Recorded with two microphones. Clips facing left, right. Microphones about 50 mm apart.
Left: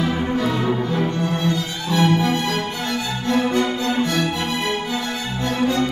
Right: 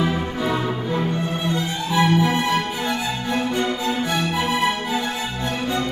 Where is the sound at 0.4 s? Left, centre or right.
Centre.